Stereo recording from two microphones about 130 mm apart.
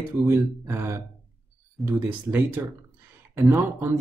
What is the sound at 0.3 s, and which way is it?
Speech, 20° right (ahead or behind).